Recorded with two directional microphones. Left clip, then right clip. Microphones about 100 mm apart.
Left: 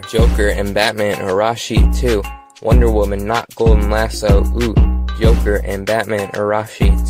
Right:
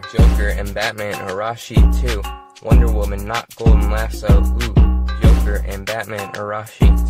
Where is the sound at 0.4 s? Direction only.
90° left.